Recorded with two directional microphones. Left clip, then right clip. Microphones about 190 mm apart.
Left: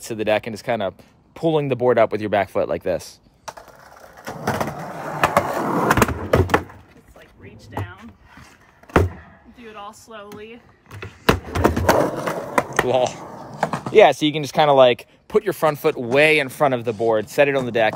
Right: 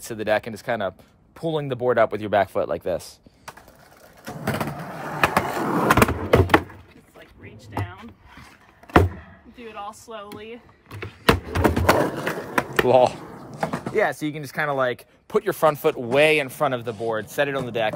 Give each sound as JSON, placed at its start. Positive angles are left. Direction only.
{"t": 0.0, "sound": "speech", "side_deg": 10}
{"t": 4.2, "sound": "skateboard", "side_deg": 10}
{"t": 7.7, "sound": "a sound", "side_deg": -5}
{"t": 9.6, "sound": "speech", "side_deg": 0}
{"t": 10.1, "sound": "a sound", "side_deg": 0}
{"t": 12.1, "sound": "skateboard", "side_deg": 10}
{"t": 12.8, "sound": "speech", "side_deg": -10}
{"t": 13.2, "sound": "computer keyboard", "side_deg": 25}
{"t": 13.6, "sound": "a sound", "side_deg": 45}
{"t": 14.4, "sound": "speech", "side_deg": 25}
{"t": 15.2, "sound": "speech", "side_deg": 10}